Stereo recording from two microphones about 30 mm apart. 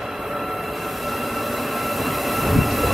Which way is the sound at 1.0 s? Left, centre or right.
Centre.